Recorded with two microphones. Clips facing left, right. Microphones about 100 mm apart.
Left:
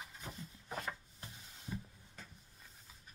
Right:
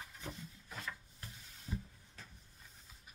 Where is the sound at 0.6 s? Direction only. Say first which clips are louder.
Left 5 dB; 45° left (ahead or behind).